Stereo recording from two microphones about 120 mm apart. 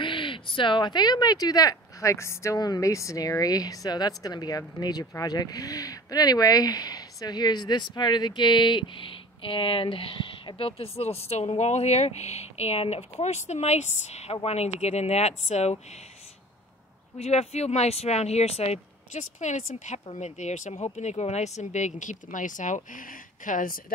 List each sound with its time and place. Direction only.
0.0 s speech: 45° left (ahead or behind); by 15.8 s 65° left (ahead or behind)
17.2 s speech: 65° left (ahead or behind); by 20.0 s 80° left
20.1 s speech: 70° left (ahead or behind); by 23.6 s 90° left